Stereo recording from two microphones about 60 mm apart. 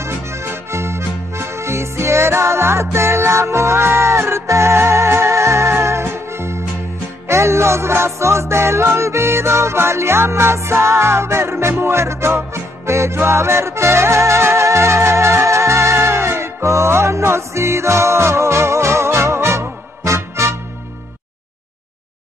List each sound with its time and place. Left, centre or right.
0.0 s accordion: right
7.2 s music: right